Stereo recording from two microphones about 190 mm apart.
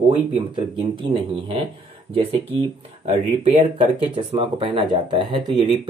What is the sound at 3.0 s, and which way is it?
Speech, 35° right (ahead or behind).